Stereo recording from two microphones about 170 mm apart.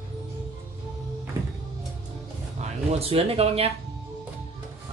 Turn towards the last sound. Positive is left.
turn(degrees=-35)  # may be behind; listen again after turning